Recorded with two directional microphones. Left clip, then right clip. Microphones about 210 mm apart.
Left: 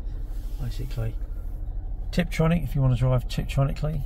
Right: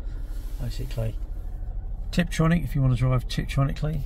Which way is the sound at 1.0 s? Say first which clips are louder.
Right 4 dB; 30° right (ahead or behind).